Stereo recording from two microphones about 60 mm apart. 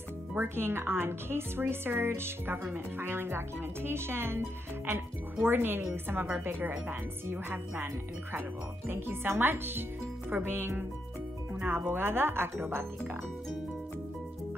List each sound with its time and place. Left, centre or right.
0.4 s speech: right